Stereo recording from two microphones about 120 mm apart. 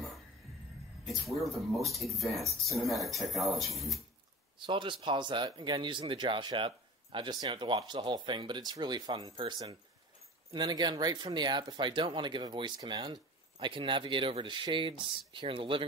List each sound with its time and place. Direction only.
1.0 s speech: centre (ahead or behind)
4.6 s speech: 45° right (ahead or behind)